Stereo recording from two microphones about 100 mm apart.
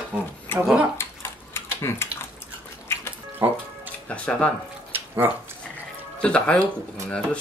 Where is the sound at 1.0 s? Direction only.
25° left (ahead or behind).